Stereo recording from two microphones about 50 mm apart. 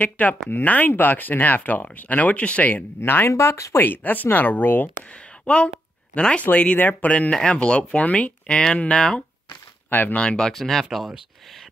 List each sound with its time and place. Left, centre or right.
0.0 s speech: left
3.3 s speech: left
3.8 s speech: left
5.4 s speech: left
6.8 s speech: left
7.1 s speech: left
9.8 s speech: left
10.1 s speech: centre
10.5 s speech: centre